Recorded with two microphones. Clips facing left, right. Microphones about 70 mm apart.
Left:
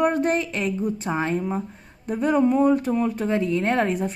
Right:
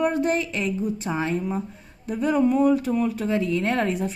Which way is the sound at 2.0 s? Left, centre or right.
Left.